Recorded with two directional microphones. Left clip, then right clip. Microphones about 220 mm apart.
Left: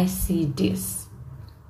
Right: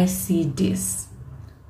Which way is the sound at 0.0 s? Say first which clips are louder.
Right 3 dB; 10° left (ahead or behind).